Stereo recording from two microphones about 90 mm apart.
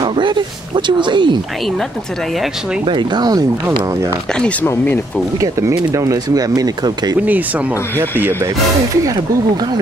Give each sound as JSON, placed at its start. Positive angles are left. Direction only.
{"t": 0.0, "sound": "speech", "side_deg": -65}
{"t": 2.8, "sound": "speech", "side_deg": -60}
{"t": 4.4, "sound": "speech", "side_deg": 15}
{"t": 5.4, "sound": "speech", "side_deg": -35}
{"t": 7.2, "sound": "speech", "side_deg": -15}